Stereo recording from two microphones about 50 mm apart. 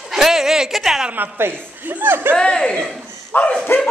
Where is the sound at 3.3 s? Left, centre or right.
Left.